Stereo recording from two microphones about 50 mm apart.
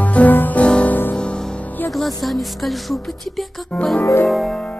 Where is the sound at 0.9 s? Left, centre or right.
Left.